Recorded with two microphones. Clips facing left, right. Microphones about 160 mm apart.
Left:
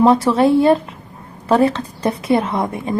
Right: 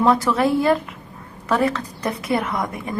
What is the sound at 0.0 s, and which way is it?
A woman's voice, 30° left (ahead or behind).